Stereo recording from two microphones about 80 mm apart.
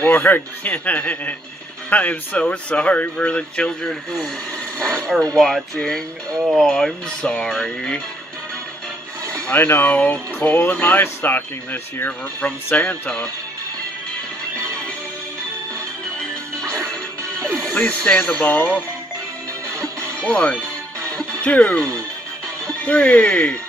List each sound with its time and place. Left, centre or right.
0.0 s speech: left
5.4 s speech: centre
9.5 s speech: left
17.4 s music: right
17.7 s speech: centre
20.2 s speech: centre